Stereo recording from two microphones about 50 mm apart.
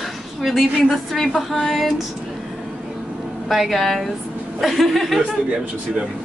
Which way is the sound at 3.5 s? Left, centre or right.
Centre.